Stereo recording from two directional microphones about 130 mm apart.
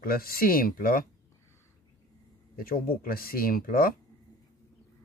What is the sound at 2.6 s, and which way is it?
Speech, 90° left.